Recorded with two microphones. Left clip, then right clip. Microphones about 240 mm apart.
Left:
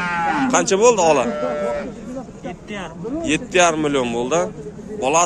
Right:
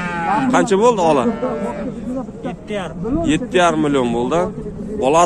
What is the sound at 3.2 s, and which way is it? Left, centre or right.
A man's voice, centre.